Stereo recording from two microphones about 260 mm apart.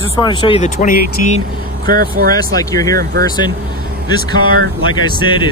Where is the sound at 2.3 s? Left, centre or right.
Centre.